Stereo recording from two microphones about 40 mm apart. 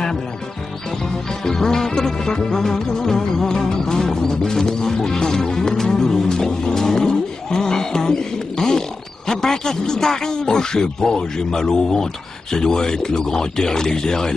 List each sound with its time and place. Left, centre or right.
1.4 s music: centre
9.3 s speech: centre